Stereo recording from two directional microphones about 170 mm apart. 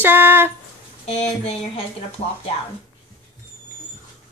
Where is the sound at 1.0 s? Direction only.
40° left (ahead or behind).